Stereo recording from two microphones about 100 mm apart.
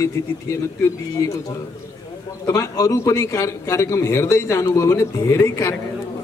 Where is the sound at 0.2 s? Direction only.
30° left (ahead or behind).